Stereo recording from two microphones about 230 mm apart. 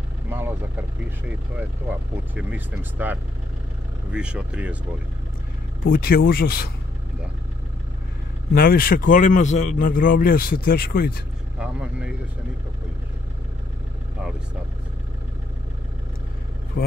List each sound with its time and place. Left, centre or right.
0.3 s vehicle: centre
2.3 s speech: centre
5.9 s a man's voice: left
8.5 s a man's voice: left
11.6 s speech: centre